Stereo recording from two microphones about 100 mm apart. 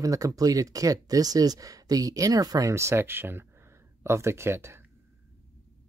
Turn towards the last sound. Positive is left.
turn(degrees=-25)  # may be behind; listen again after turning